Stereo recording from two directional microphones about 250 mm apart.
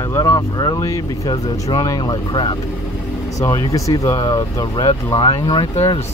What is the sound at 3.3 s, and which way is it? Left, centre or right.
Speech, centre.